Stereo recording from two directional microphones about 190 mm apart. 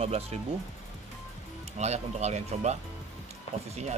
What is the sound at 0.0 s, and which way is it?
Speech, 30° right (ahead or behind).